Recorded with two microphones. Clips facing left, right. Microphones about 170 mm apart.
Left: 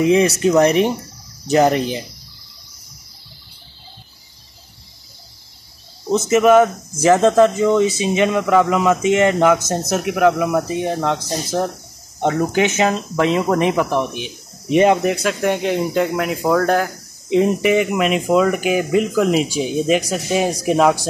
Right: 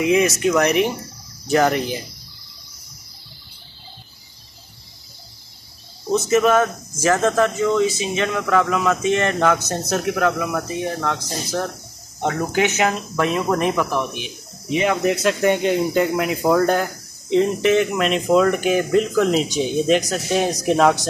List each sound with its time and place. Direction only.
0.0 s speech: 30° left (ahead or behind)
6.1 s speech: 20° left (ahead or behind)
13.8 s speech: 25° left (ahead or behind)
15.0 s speech: centre (ahead or behind)
17.3 s speech: 10° left (ahead or behind)